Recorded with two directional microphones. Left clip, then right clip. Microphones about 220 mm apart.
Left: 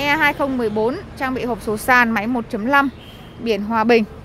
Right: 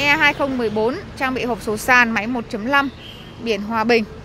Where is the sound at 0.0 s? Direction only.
10° left (ahead or behind).